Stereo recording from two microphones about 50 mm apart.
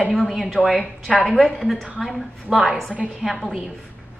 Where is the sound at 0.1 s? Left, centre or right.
Centre.